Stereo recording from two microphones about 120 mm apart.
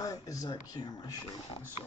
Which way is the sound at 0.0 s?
30° left (ahead or behind).